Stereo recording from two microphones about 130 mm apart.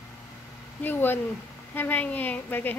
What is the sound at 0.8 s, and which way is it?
A woman's voice, 15° left (ahead or behind).